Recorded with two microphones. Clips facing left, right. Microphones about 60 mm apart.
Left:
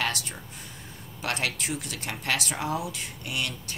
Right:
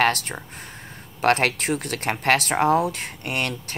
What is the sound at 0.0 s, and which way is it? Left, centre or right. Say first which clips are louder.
Speech: right 9 dB; right.